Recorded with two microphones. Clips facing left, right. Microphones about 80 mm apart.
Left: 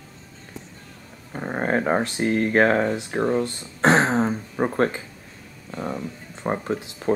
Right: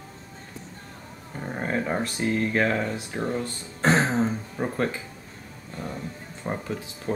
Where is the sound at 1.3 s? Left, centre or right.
Left.